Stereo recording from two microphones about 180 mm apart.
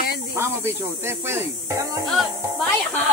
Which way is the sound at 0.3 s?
15° right (ahead or behind).